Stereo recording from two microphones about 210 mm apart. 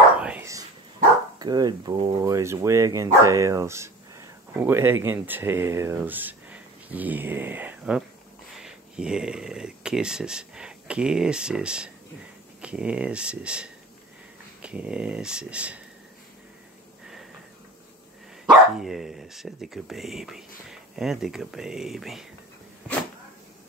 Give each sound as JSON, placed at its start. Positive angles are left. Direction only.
{"t": 0.2, "sound": "a sound", "side_deg": -10}
{"t": 1.4, "sound": "speech", "side_deg": -20}
{"t": 18.8, "sound": "speech", "side_deg": 0}